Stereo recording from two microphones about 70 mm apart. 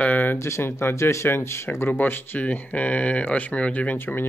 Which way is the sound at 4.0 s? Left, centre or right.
Left.